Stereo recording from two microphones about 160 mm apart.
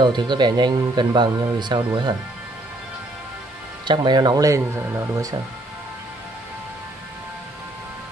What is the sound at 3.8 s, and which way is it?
Speech, 25° right (ahead or behind).